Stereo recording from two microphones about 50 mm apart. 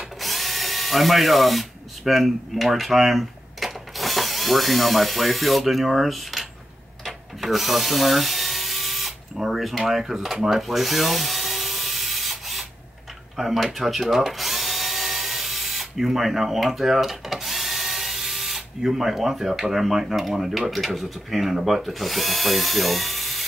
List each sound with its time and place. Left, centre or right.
0.2 s speech: centre
7.1 s drill: centre
13.4 s speech: centre